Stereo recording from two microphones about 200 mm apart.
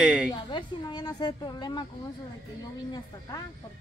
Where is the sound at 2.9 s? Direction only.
20° left (ahead or behind).